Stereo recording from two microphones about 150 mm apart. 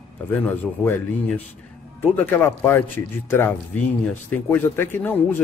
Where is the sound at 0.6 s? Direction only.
10° left (ahead or behind).